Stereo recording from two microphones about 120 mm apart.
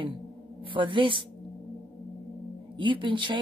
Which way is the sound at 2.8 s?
45° right (ahead or behind).